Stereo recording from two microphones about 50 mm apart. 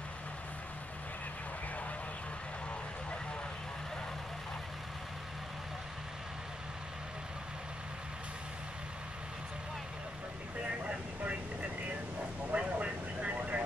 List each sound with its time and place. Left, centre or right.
10.6 s vehicle: right